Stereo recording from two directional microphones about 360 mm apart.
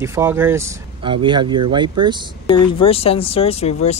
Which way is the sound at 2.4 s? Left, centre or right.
Centre.